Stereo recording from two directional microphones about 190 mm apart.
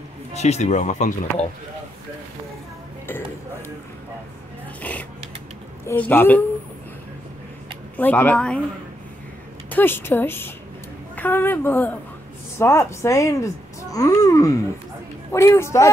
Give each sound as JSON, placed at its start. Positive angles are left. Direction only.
{"t": 0.3, "sound": "speech", "side_deg": 35}
{"t": 3.1, "sound": "music", "side_deg": 10}
{"t": 4.9, "sound": "a woman's voice", "side_deg": 10}
{"t": 8.0, "sound": "a woman's voice", "side_deg": 10}
{"t": 9.7, "sound": "a woman's voice", "side_deg": 10}